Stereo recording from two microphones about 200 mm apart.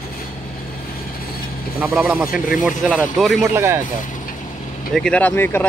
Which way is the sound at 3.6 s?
15° right (ahead or behind).